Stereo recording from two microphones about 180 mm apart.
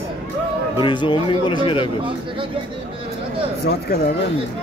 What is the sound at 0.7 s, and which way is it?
Speech, 25° left (ahead or behind).